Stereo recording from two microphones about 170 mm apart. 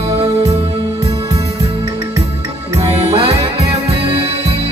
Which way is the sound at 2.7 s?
35° right (ahead or behind).